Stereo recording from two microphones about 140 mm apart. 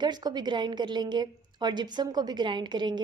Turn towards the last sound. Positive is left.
turn(degrees=-30)  # may be behind; listen again after turning